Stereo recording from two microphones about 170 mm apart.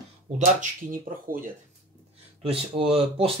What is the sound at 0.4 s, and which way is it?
Speech, 55° right (ahead or behind).